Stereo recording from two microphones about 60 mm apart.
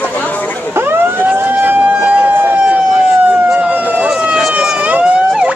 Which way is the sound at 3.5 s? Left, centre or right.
Right.